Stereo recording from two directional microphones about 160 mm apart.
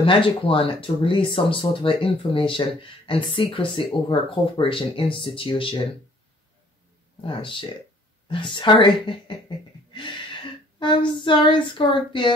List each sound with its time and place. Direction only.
0.0 s speech: 35° left (ahead or behind)
7.2 s speech: 30° left (ahead or behind)